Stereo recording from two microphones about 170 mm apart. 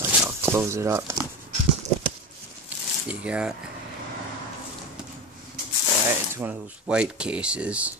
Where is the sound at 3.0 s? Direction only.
5° right (ahead or behind).